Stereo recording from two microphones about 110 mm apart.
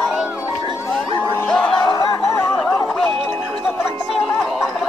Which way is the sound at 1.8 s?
40° left (ahead or behind).